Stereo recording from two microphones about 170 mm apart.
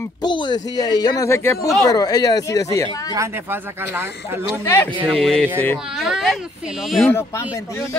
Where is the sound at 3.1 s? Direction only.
15° right (ahead or behind).